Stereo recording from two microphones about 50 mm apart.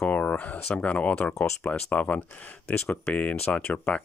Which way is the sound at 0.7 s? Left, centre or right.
Left.